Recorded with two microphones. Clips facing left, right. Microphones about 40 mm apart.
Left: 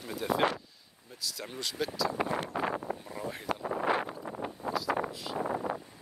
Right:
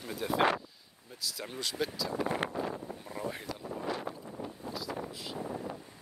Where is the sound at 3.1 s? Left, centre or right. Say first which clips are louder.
Even; centre.